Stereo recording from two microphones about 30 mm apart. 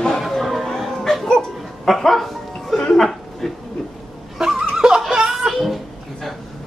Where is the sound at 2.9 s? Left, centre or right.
Centre.